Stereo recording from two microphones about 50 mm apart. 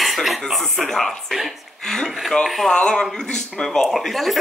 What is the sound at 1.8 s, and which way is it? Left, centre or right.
Speech, centre.